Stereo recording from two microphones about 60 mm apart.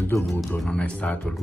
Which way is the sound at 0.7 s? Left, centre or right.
Centre.